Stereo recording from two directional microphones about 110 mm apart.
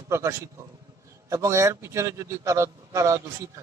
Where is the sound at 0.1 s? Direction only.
25° right (ahead or behind).